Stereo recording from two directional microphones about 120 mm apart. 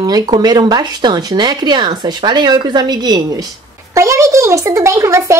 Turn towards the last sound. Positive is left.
turn(degrees=-25)  # may be behind; listen again after turning